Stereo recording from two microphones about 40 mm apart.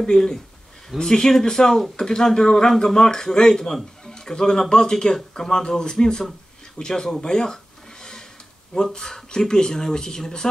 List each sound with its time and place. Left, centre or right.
0.1 s speech: centre
8.7 s speech: centre